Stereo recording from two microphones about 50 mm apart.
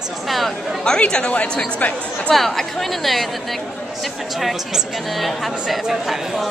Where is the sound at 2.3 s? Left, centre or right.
Centre.